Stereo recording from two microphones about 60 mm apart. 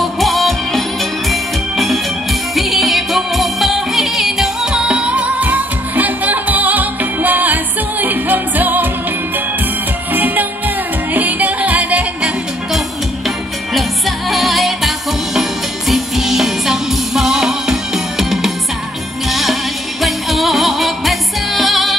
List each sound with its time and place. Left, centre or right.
0.0 s music: centre
4.8 s music: centre
10.1 s music: right
11.1 s yodeling: right
13.7 s music: centre
15.9 s music: centre
20.0 s music: centre